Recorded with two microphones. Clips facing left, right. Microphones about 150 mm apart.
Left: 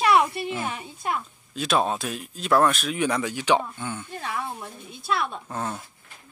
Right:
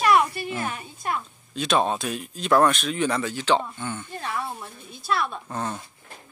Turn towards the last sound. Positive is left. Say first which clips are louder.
# right 1 dB
turn(degrees=0)  # may be behind; listen again after turning